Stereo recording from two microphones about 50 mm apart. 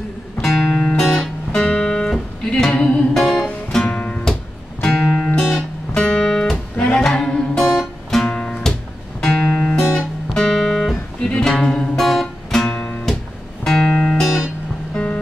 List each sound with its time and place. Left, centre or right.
0.4 s music: centre
1.5 s music: left
2.7 s music: left
3.2 s music: centre
3.7 s music: centre
4.8 s music: centre
6.5 s music: left
7.0 s music: centre
12.0 s music: centre
13.8 s music: centre